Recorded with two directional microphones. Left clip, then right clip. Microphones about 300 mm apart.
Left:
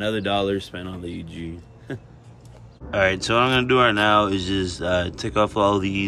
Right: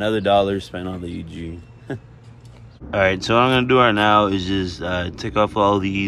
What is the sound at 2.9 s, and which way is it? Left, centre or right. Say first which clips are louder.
Speech: right 2 dB; centre.